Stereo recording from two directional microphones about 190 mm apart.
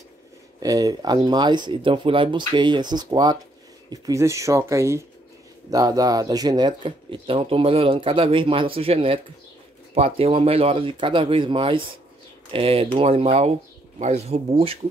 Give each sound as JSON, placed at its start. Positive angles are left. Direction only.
{"t": 0.6, "sound": "speech", "side_deg": -20}